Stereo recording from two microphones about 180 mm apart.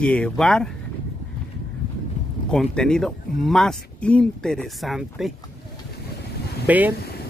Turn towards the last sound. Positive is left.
turn(degrees=-10)  # may be behind; listen again after turning